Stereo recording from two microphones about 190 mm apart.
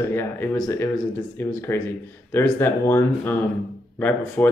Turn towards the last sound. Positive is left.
turn(degrees=10)  # may be behind; listen again after turning